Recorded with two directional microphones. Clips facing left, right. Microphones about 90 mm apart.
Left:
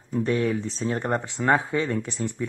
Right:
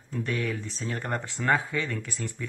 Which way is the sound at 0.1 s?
30° left (ahead or behind).